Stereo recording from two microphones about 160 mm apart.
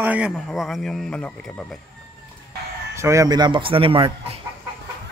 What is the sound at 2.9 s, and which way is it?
Speech, 20° right (ahead or behind).